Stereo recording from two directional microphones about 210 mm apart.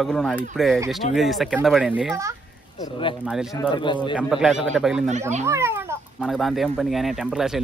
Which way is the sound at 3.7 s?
20° left (ahead or behind).